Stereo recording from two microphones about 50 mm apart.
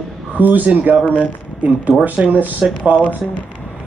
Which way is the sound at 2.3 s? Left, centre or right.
Right.